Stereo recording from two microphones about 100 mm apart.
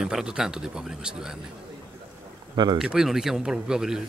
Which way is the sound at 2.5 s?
45° right (ahead or behind).